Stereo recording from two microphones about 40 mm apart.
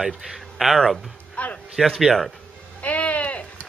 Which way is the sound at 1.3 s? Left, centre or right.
Left.